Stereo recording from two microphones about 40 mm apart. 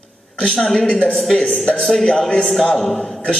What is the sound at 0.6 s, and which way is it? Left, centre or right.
A man's voice, centre.